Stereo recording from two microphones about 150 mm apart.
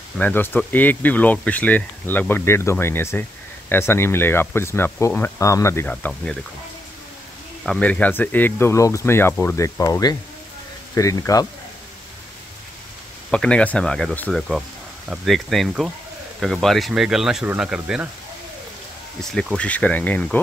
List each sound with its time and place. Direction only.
0.2 s speech: 15° left (ahead or behind)
7.6 s speech: 5° left (ahead or behind); by 11.4 s 20° left (ahead or behind)
13.3 s speech: 5° left (ahead or behind)
19.3 s speech: 5° left (ahead or behind)